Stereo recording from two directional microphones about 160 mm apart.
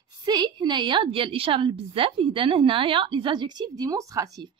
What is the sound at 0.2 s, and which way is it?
A woman's voice, 25° right (ahead or behind).